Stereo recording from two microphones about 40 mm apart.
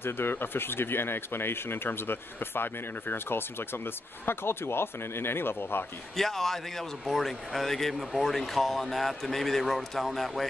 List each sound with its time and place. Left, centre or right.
0.0 s speech: left
6.1 s a man's voice: centre